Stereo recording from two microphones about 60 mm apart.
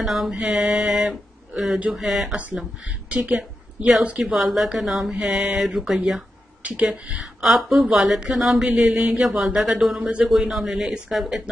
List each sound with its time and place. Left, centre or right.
0.0 s speech: centre
3.1 s a woman's voice: centre
4.2 s speech: centre
5.1 s a woman's voice: centre
5.6 s a woman's voice: centre
9.2 s speech: centre
9.9 s speech: centre
10.2 s speech: centre